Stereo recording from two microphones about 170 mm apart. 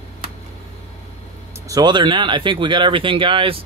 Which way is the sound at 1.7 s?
25° right (ahead or behind).